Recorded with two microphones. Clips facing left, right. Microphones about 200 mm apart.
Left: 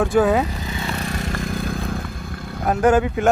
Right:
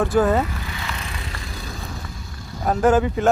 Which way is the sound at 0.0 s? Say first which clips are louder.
Left 1 dB; centre (ahead or behind).